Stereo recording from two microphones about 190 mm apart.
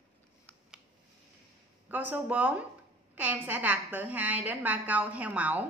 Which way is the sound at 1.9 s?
10° right (ahead or behind).